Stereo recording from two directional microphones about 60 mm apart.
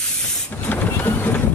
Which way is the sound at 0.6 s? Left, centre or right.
Left.